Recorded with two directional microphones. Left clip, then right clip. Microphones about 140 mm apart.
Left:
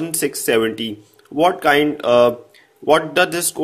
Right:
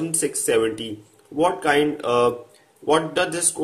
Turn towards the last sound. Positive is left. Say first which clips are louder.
# left 6 dB
turn(degrees=35)  # may be behind; listen again after turning